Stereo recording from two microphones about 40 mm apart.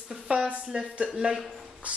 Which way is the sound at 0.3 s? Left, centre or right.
Right.